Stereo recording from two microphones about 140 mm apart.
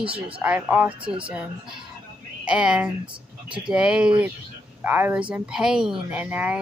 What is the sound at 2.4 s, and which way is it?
A woman's voice, 5° right (ahead or behind).